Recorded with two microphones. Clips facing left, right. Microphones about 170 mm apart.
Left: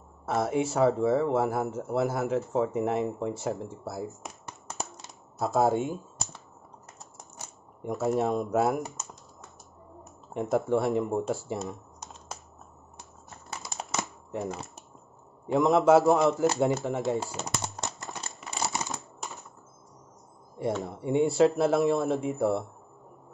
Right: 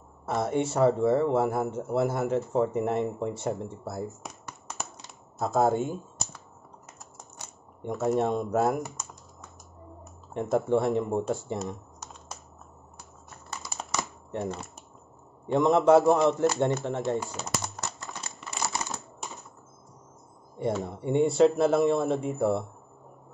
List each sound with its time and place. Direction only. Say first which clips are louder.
0.2 s speech: even; centre (ahead or behind)
5.4 s speech: even; centre (ahead or behind)
7.8 s speech: right 1 dB; centre (ahead or behind)
10.3 s speech: right 1 dB; centre (ahead or behind)
14.3 s speech: right 1 dB; centre (ahead or behind)
18.7 s a sound: even; 20° left (ahead or behind)
20.5 s speech: right 1 dB; centre (ahead or behind)